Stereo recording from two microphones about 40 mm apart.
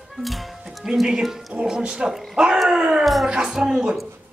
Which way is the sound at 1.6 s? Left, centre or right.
Right.